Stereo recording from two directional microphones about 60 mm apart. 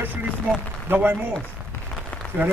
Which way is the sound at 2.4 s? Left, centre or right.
Right.